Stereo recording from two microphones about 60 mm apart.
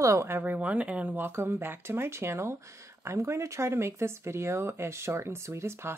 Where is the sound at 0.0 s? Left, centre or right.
Right.